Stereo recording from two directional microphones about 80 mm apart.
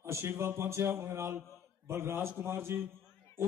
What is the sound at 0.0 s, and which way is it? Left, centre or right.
A man's voice, right.